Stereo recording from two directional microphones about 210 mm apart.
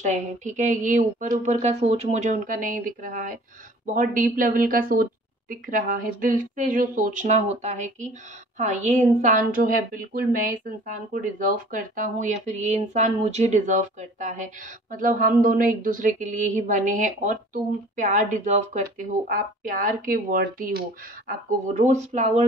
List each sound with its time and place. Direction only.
0.0 s a woman's voice: 35° right (ahead or behind)